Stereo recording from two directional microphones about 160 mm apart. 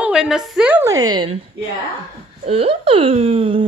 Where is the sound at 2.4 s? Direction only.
35° right (ahead or behind).